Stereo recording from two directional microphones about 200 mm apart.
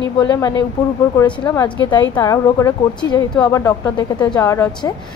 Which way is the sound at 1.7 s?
25° left (ahead or behind).